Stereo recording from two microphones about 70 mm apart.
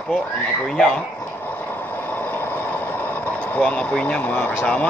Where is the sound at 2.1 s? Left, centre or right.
Left.